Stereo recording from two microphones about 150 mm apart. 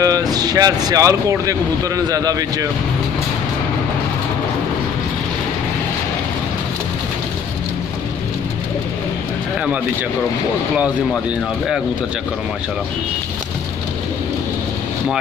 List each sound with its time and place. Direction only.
0.0 s speech: 25° right (ahead or behind)